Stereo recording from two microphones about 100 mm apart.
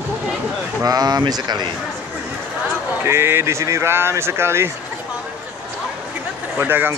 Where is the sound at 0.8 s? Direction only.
40° right (ahead or behind).